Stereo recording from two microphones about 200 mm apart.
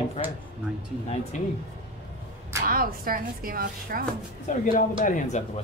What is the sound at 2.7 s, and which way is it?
Speech, 45° right (ahead or behind).